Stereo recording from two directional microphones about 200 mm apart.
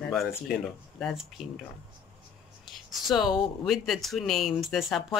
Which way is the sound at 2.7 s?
Centre (ahead or behind).